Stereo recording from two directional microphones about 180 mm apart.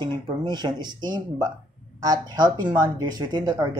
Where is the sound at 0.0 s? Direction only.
25° right (ahead or behind).